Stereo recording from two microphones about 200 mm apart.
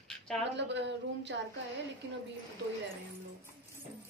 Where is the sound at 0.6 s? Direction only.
60° right (ahead or behind).